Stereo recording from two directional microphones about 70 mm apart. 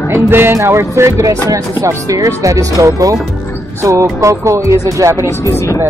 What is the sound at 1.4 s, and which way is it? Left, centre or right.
Speech, right.